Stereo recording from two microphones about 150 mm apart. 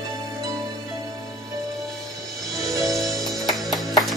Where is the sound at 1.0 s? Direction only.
25° right (ahead or behind).